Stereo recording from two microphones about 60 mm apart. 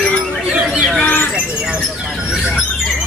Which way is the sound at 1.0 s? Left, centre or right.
Left.